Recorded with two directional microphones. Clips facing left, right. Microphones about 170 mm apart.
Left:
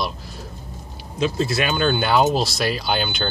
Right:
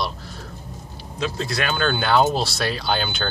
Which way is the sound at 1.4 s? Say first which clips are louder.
Left 2 dB; 5° left (ahead or behind).